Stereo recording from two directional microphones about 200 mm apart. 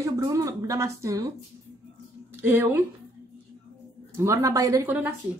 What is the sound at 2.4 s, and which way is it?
Speech, 10° right (ahead or behind).